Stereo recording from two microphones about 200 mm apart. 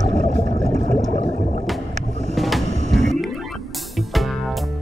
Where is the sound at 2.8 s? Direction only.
Centre (ahead or behind).